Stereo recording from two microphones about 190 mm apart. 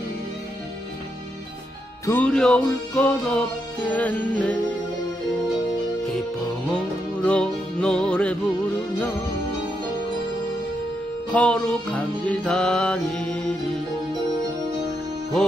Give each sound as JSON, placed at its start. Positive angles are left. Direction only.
{"t": 2.0, "sound": "music", "side_deg": 5}
{"t": 6.7, "sound": "music", "side_deg": 5}
{"t": 11.3, "sound": "music", "side_deg": 5}